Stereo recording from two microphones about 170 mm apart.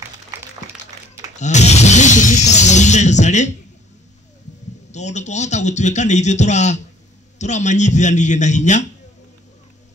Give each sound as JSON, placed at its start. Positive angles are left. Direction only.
{"t": 1.4, "sound": "music", "side_deg": 40}
{"t": 4.9, "sound": "a man's voice", "side_deg": 45}